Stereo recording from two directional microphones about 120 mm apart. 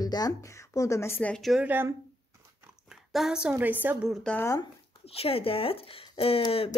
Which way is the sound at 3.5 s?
15° right (ahead or behind).